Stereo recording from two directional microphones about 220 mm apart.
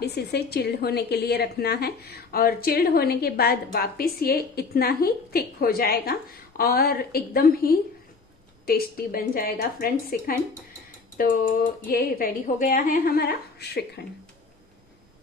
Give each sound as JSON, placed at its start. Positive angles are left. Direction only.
{"t": 0.0, "sound": "a woman's voice", "side_deg": 45}